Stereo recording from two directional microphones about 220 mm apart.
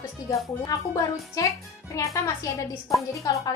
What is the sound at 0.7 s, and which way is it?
A woman's voice, 15° left (ahead or behind).